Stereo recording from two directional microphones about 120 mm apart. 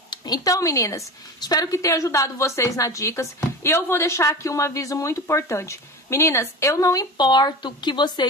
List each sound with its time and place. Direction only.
0.1 s a woman's voice: 35° left (ahead or behind)